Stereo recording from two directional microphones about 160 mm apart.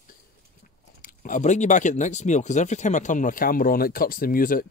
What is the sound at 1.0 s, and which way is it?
Speech, 55° left (ahead or behind).